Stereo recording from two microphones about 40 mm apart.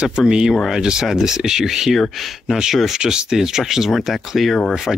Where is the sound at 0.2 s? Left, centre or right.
Centre.